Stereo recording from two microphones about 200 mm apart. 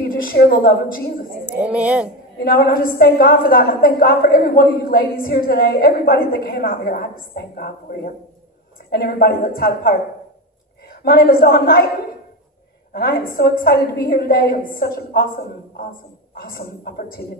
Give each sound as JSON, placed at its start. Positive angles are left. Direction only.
{"t": 0.1, "sound": "a woman's voice", "side_deg": 45}
{"t": 1.4, "sound": "speech", "side_deg": -5}
{"t": 2.3, "sound": "a woman's voice", "side_deg": 50}
{"t": 12.9, "sound": "a woman's voice", "side_deg": 50}